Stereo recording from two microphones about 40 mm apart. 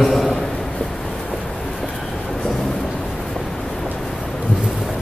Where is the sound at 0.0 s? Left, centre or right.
Centre.